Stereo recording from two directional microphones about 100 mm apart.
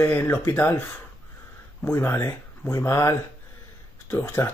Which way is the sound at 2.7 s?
30° left (ahead or behind).